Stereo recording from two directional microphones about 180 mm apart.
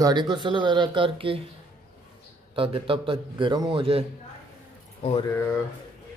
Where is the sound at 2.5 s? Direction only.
30° right (ahead or behind).